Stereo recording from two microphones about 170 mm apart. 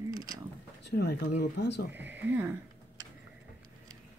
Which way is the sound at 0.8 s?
75° left (ahead or behind).